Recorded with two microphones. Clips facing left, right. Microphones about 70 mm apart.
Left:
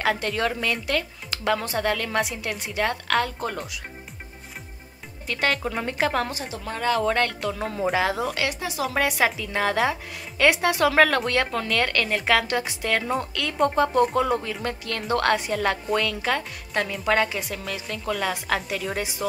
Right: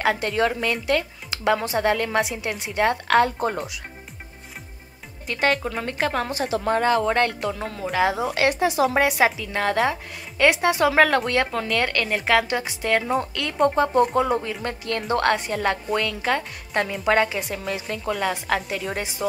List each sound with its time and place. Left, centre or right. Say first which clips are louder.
0.0 s speech: right 3 dB; centre
3.3 s speech: right 5 dB; right
5.2 s a woman's voice: right 3 dB; centre
6.6 s a woman's voice: right 7 dB; right
7.1 s speech: right 2 dB; centre
7.6 s a woman's voice: left 3 dB; centre
8.0 s speech: right 3 dB; centre
8.4 s a woman's voice: right 7 dB; right
9.0 s a woman's voice: right 3 dB; centre